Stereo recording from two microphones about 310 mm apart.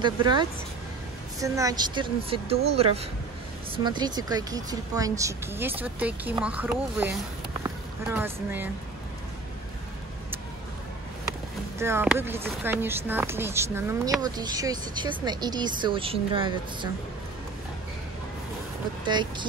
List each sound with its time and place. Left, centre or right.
0.0 s speech: centre
11.8 s speech: centre
19.0 s speech: centre